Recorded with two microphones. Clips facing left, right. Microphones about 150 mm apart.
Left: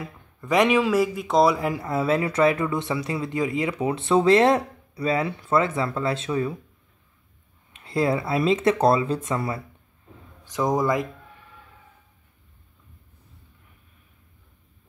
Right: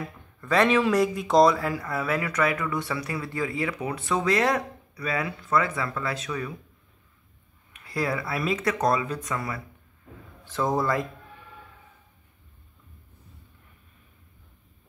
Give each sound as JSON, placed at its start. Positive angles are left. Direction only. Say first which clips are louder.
{"t": 0.4, "sound": "speech", "louder": "left 2 dB", "side_deg": 15}
{"t": 1.5, "sound": "speech", "louder": "left 3 dB", "side_deg": 20}
{"t": 7.7, "sound": "speech", "louder": "left 5 dB", "side_deg": 25}
{"t": 10.4, "sound": "speech", "louder": "left 3 dB", "side_deg": 15}